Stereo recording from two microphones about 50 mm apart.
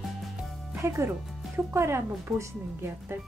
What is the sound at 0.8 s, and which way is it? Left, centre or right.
Speech, right.